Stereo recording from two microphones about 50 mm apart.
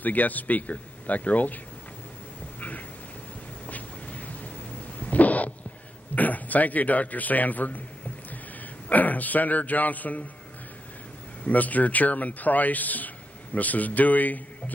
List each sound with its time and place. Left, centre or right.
0.0 s speech: left
3.6 s a sound: left
6.1 s speech: left
8.8 s speech: left
11.4 s speech: left